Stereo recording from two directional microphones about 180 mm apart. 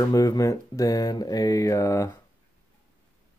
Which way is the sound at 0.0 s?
20° left (ahead or behind).